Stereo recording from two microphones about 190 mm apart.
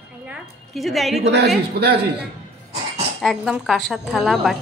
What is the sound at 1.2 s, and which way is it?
Speech, 65° right (ahead or behind).